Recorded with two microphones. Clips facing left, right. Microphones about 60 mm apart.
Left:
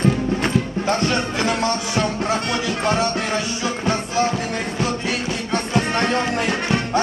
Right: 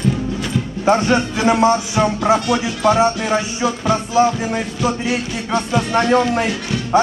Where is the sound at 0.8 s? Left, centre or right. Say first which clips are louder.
Right 10 dB; centre.